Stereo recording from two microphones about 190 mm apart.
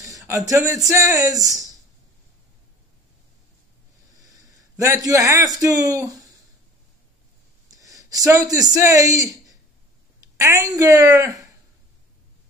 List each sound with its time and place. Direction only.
0.3 s a man's voice: 15° right (ahead or behind)
4.2 s a man's voice: 20° right (ahead or behind)
7.6 s a sound: 20° right (ahead or behind)
8.3 s a man's voice: 20° right (ahead or behind)